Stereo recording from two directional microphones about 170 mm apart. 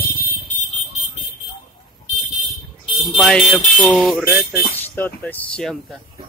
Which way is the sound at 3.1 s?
Centre (ahead or behind).